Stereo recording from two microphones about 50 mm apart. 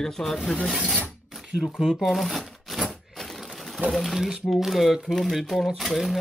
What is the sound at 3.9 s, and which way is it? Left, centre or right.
Speech, centre.